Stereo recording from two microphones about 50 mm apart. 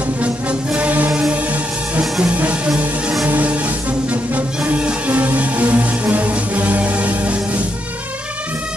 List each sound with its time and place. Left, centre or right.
0.2 s music: right
2.2 s music: right